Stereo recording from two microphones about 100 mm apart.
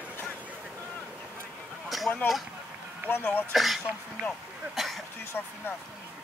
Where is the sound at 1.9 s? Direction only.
Centre (ahead or behind).